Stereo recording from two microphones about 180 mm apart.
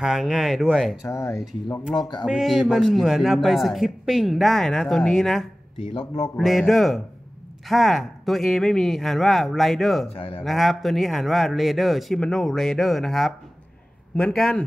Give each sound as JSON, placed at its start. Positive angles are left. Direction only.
{"t": 0.0, "sound": "a man's voice", "side_deg": 0}
{"t": 1.0, "sound": "speech", "side_deg": 15}
{"t": 2.2, "sound": "a man's voice", "side_deg": -5}
{"t": 10.0, "sound": "speech", "side_deg": 30}
{"t": 10.4, "sound": "a man's voice", "side_deg": 0}